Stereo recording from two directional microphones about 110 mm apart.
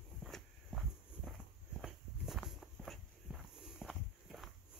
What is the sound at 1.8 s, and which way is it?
Walk, centre (ahead or behind).